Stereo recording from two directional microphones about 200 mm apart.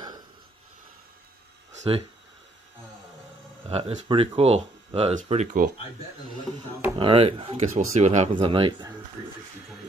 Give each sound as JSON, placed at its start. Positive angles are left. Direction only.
{"t": 1.7, "sound": "a sound", "side_deg": -30}
{"t": 3.6, "sound": "speech", "side_deg": -30}
{"t": 7.0, "sound": "speech", "side_deg": -25}